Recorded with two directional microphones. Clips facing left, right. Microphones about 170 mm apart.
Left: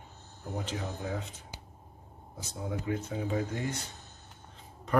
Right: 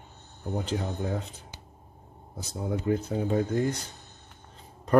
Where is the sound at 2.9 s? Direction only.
35° right (ahead or behind).